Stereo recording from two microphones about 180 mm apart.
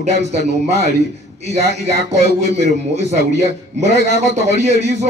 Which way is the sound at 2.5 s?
40° right (ahead or behind).